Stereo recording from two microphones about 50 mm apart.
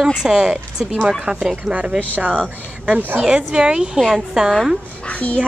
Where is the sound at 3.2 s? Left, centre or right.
Centre.